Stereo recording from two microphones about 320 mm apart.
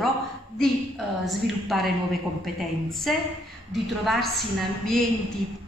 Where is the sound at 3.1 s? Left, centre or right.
Centre.